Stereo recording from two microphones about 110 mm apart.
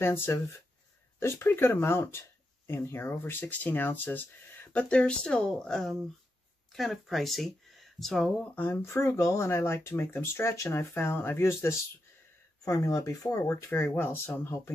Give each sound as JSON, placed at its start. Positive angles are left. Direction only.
{"t": 0.0, "sound": "speech", "side_deg": 20}
{"t": 8.5, "sound": "speech", "side_deg": 20}
{"t": 13.7, "sound": "speech", "side_deg": 20}